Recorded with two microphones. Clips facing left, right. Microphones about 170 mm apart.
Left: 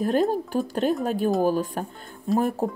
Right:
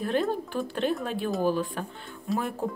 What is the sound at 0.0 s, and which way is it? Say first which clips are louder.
Speech: left 5 dB; 40° left (ahead or behind).